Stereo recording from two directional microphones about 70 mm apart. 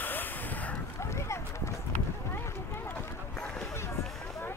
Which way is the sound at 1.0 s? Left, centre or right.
Left.